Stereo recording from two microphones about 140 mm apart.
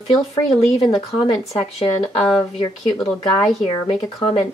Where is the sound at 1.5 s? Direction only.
40° left (ahead or behind).